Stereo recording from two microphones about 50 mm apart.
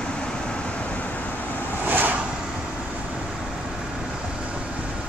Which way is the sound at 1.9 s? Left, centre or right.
Right.